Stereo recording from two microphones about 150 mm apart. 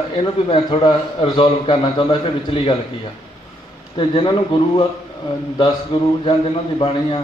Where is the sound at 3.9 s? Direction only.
35° left (ahead or behind).